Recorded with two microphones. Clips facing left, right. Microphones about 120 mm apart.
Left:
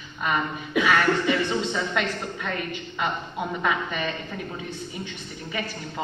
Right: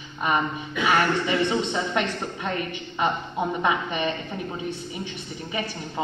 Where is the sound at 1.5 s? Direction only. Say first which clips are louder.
Right 1 dB; 20° right (ahead or behind).